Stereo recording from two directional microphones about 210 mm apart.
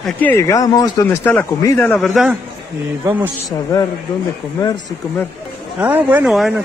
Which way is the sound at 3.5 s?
15° left (ahead or behind).